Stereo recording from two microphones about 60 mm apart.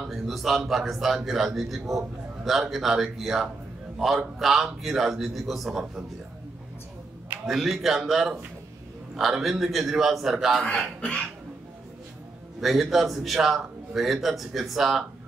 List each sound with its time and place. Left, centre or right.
0.0 s a man's voice: centre
7.4 s a man's voice: centre
11.0 s cough: centre
12.5 s a man's voice: centre